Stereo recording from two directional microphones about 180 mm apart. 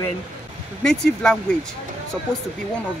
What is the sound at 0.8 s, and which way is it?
Speech, 5° left (ahead or behind).